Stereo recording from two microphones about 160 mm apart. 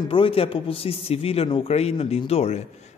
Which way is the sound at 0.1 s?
35° left (ahead or behind).